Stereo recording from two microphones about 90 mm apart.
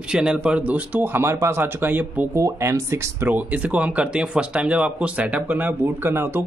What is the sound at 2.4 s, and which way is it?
Speech, 35° right (ahead or behind).